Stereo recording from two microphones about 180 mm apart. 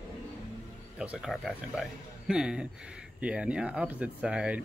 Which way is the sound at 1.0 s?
5° right (ahead or behind).